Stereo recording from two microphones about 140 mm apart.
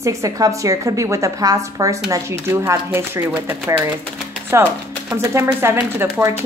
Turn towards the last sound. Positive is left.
turn(degrees=-15)  # may be behind; listen again after turning